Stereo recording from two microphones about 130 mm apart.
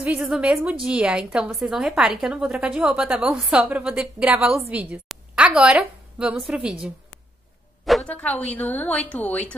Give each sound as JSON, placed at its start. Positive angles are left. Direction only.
{"t": 0.0, "sound": "a woman's voice", "side_deg": -10}
{"t": 8.0, "sound": "a woman's voice", "side_deg": 10}